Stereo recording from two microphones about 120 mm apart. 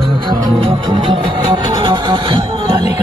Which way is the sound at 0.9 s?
50° right (ahead or behind).